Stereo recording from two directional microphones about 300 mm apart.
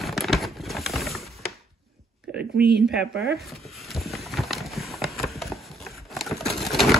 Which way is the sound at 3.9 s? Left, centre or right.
Centre.